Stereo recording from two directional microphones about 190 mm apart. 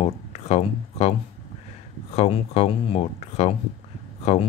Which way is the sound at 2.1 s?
30° left (ahead or behind).